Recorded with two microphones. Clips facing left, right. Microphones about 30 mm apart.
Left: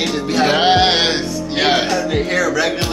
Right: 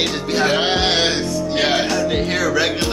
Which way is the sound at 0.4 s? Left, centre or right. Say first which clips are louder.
Left 5 dB; centre.